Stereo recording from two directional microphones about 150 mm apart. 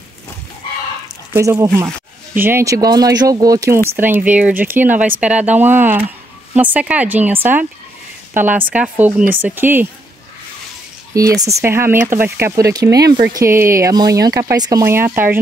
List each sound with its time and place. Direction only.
1.3 s speech: 20° right (ahead or behind)
11.1 s speech: 20° right (ahead or behind)